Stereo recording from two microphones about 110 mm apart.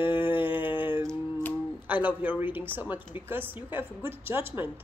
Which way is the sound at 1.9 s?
15° right (ahead or behind).